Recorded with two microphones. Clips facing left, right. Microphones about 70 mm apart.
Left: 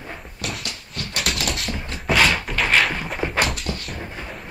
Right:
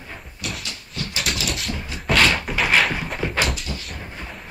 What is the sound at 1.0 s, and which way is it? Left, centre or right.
Dog, left.